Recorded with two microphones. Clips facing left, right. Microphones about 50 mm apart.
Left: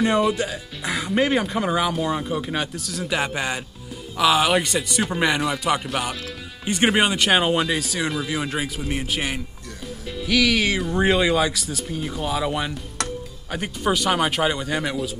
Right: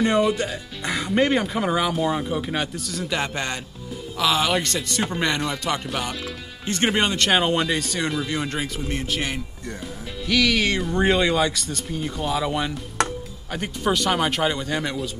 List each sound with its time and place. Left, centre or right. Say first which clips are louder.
0.0 s speech: even; centre